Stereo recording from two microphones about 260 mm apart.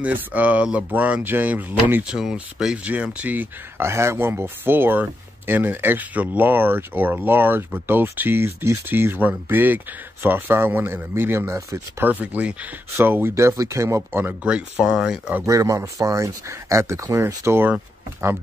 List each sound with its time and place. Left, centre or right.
0.0 s speech: centre